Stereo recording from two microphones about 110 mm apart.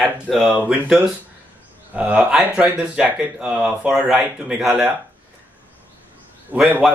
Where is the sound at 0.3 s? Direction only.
Centre (ahead or behind).